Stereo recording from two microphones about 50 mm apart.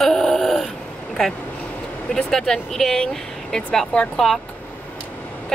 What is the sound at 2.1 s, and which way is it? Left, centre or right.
A woman's voice, centre.